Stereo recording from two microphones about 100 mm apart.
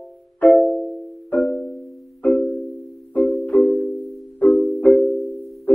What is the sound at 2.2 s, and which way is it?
Music, 10° left (ahead or behind).